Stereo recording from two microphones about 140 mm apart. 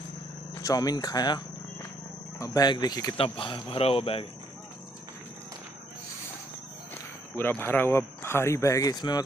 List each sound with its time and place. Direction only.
0.6 s speech: 25° left (ahead or behind)
3.2 s speech: 40° left (ahead or behind)
7.3 s speech: 15° left (ahead or behind)